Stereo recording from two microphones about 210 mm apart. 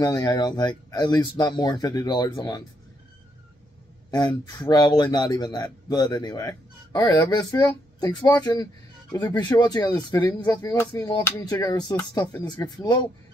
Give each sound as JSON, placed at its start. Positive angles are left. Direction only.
{"t": 0.0, "sound": "speech", "side_deg": 20}
{"t": 4.1, "sound": "speech", "side_deg": 20}